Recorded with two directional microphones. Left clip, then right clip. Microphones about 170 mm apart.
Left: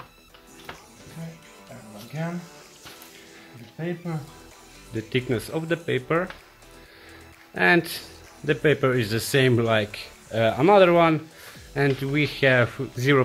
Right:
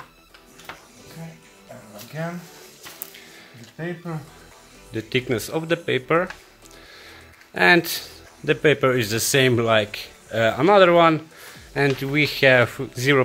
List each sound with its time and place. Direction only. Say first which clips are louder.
3.8 s speech: right 1 dB; 25° right (ahead or behind)
7.5 s speech: right 4 dB; 25° right (ahead or behind)